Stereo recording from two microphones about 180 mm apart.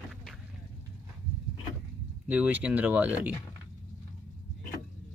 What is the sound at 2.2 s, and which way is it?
Speech, 10° right (ahead or behind).